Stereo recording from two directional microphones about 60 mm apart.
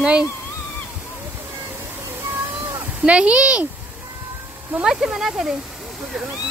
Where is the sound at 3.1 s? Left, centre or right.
Centre.